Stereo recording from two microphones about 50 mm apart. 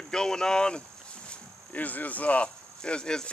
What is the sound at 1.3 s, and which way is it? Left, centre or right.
Cricket, left.